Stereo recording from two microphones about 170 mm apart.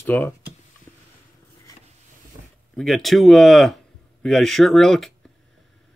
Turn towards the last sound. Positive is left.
turn(degrees=0)  # may be behind; listen again after turning